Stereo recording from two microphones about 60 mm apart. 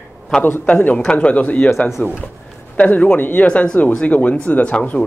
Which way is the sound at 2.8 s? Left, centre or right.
Left.